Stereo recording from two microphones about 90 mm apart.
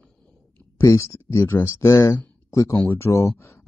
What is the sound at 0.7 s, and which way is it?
Speech, 35° left (ahead or behind).